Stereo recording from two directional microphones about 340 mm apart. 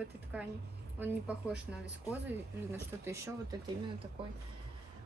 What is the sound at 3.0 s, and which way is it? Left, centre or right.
Speech, centre.